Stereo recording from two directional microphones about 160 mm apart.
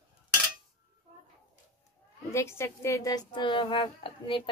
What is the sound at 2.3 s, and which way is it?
A child's voice, 15° left (ahead or behind).